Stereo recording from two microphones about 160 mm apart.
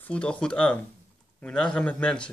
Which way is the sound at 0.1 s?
5° left (ahead or behind).